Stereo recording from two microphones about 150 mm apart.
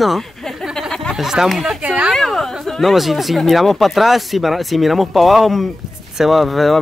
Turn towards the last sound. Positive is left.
turn(degrees=0)  # may be behind; listen again after turning